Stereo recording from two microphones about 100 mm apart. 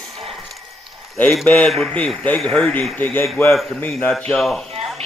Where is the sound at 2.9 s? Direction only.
15° left (ahead or behind).